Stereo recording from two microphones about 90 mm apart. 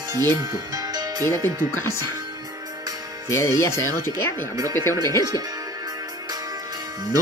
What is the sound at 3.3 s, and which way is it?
Speech, 30° left (ahead or behind).